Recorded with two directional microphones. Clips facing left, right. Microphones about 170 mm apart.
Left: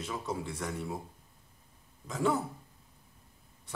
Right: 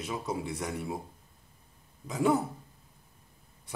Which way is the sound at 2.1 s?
15° right (ahead or behind).